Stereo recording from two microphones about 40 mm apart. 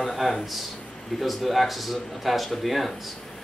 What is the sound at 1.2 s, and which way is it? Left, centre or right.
Speech, centre.